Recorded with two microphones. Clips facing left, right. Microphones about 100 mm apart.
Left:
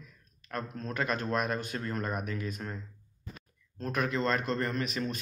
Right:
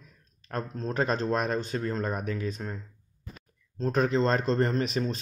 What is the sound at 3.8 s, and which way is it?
Speech, 30° right (ahead or behind).